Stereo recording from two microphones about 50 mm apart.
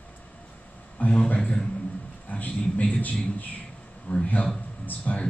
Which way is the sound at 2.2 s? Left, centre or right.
Left.